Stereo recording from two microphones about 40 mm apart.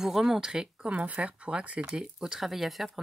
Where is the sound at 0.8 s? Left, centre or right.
Right.